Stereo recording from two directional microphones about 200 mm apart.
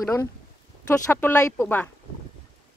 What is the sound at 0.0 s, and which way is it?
Speech, 15° left (ahead or behind).